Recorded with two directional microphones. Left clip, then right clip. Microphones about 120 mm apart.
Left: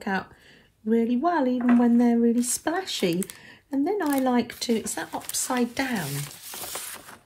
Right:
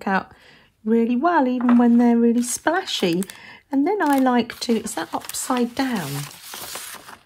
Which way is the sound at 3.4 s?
55° right (ahead or behind).